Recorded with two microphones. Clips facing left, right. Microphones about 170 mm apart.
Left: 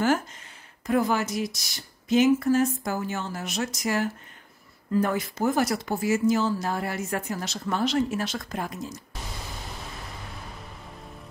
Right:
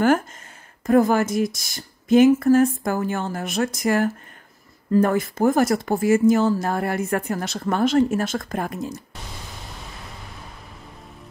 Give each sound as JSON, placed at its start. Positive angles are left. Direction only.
{"t": 0.8, "sound": "speech", "side_deg": -50}